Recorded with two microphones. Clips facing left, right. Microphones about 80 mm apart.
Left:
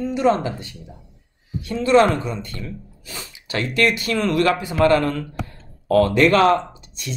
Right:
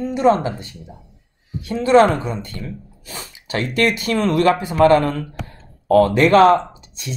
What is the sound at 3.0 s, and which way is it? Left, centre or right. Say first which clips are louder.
Speech: right 3 dB; right.